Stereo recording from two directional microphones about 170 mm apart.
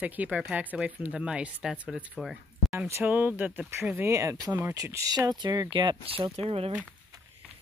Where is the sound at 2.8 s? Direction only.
15° right (ahead or behind); by 6.4 s 35° right (ahead or behind).